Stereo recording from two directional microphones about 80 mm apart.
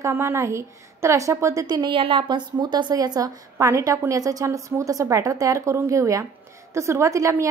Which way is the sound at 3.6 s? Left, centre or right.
Right.